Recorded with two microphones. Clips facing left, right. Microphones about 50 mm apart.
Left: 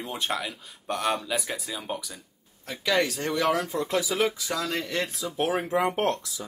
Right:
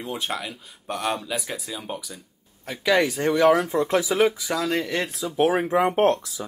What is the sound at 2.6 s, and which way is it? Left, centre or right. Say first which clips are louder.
Speech: right 4 dB; centre.